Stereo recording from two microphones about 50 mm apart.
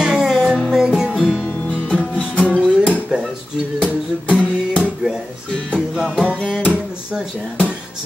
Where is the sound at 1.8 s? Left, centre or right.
Left.